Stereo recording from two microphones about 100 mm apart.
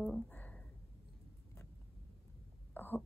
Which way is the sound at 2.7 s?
20° left (ahead or behind).